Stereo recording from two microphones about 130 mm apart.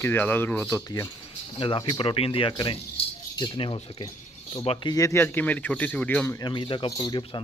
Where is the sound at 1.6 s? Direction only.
40° left (ahead or behind).